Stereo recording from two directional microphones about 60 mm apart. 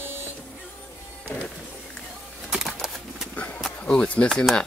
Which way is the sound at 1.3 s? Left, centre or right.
Left.